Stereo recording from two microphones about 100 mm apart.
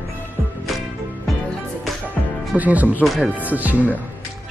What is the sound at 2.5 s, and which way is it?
Speech, 15° right (ahead or behind).